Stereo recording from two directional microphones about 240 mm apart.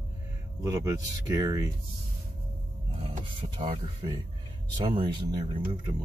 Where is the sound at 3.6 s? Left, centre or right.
Right.